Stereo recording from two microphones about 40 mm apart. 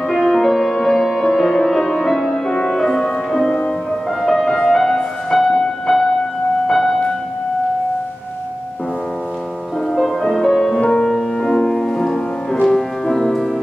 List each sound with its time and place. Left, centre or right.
0.1 s music: centre
6.7 s music: centre
9.9 s music: centre
10.8 s music: left
11.1 s music: centre